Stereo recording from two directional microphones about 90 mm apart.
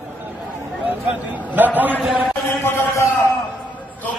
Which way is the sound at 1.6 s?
20° right (ahead or behind).